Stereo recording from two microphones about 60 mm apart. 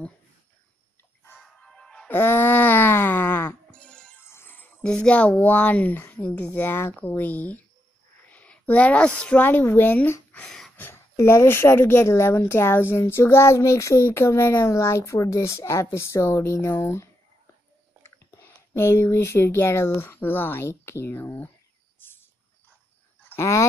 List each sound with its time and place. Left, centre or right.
1.6 s music: centre
2.0 s speech: left
3.8 s music: centre
4.3 s music: left
4.8 s speech: centre
9.4 s speech: left
10.8 s speech: left
18.0 s a sound: left
19.2 s speech: left